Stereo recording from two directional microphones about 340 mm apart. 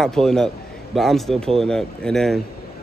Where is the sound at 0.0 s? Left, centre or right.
Centre.